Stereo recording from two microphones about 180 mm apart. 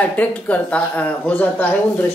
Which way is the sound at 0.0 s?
10° left (ahead or behind).